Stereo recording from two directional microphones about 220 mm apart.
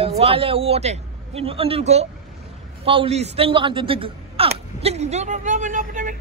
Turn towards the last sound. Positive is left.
turn(degrees=-35)  # may be behind; listen again after turning